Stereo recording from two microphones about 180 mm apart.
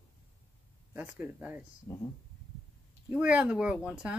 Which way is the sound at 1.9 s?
15° left (ahead or behind).